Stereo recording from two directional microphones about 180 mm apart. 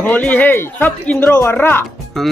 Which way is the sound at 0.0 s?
10° left (ahead or behind).